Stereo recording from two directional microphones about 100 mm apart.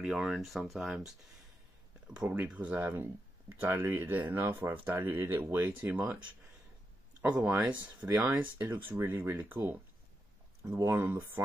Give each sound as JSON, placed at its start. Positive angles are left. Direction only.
{"t": 0.0, "sound": "speech", "side_deg": -5}
{"t": 2.8, "sound": "speech", "side_deg": -25}
{"t": 7.4, "sound": "speech", "side_deg": -20}
{"t": 10.6, "sound": "speech", "side_deg": -30}